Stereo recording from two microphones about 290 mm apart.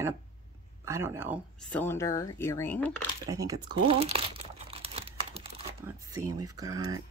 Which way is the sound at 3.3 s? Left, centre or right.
Centre.